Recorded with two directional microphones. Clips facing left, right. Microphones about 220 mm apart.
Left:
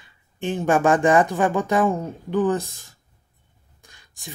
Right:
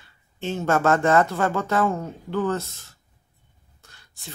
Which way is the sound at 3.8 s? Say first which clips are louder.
Left 3 dB; 15° left (ahead or behind).